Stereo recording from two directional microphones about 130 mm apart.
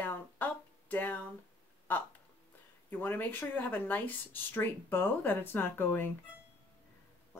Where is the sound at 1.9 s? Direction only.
10° left (ahead or behind).